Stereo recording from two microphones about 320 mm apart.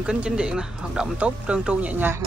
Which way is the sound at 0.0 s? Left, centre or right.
Centre.